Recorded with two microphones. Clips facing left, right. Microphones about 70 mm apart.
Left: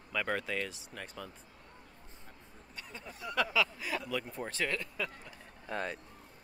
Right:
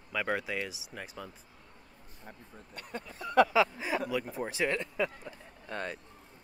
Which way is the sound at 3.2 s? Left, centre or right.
Right.